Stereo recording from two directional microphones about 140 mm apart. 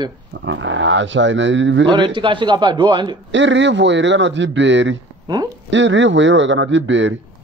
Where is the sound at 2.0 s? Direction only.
35° right (ahead or behind).